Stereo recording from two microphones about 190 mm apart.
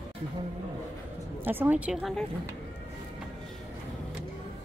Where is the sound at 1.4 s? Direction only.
10° right (ahead or behind).